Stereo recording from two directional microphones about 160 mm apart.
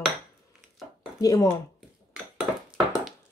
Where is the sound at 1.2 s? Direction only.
25° left (ahead or behind).